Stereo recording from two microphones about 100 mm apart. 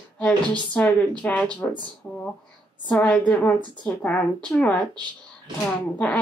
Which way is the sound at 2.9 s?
15° left (ahead or behind).